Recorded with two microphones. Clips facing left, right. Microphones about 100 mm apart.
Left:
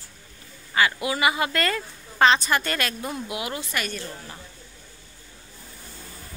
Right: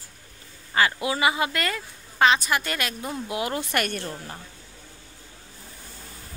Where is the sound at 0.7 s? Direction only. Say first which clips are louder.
Even; 30° right (ahead or behind); by 3.1 s 15° right (ahead or behind).